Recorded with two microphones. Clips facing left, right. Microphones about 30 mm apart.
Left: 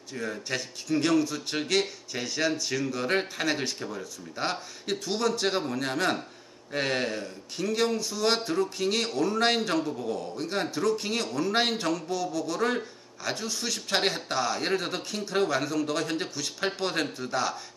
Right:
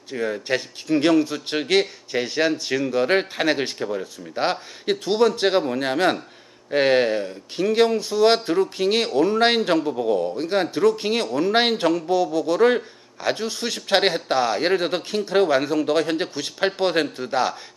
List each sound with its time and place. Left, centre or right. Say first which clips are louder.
0.1 s a man's voice: right 8 dB; right